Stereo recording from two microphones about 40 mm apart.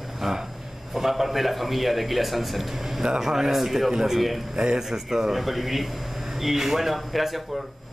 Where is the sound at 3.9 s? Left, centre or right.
Centre.